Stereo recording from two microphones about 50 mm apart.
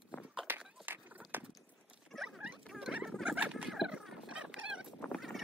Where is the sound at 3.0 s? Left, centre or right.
Centre.